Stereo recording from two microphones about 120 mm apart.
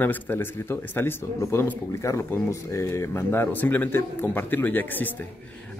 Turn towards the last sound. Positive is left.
turn(degrees=15)  # may be behind; listen again after turning